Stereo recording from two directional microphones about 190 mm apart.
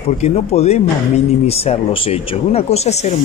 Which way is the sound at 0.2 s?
35° left (ahead or behind).